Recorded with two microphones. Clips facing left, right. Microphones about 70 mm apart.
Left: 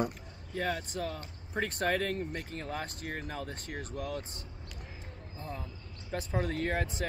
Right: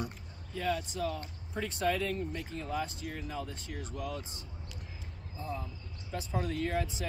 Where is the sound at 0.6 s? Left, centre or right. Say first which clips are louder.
Even; left.